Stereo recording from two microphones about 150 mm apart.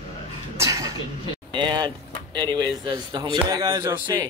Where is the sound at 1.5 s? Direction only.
30° right (ahead or behind).